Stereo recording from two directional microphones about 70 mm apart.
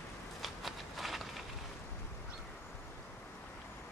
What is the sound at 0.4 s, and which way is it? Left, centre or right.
Walk, centre.